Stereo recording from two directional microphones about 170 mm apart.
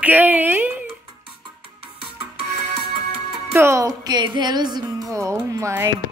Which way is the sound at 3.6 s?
15° right (ahead or behind).